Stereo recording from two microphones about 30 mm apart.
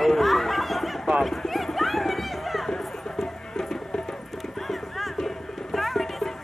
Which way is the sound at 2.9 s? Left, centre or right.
Centre.